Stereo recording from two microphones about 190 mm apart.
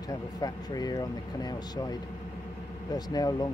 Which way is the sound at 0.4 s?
20° left (ahead or behind).